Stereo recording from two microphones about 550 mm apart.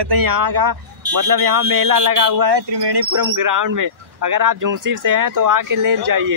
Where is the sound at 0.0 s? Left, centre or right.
Right.